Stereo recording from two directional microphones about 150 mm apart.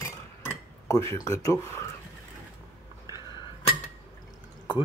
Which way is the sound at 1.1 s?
20° left (ahead or behind).